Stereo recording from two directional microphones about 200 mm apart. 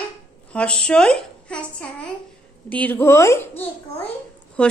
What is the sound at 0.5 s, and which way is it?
A child's voice, 5° left (ahead or behind).